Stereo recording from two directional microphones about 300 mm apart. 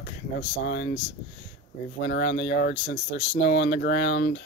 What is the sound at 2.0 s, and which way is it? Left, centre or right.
Speech, left.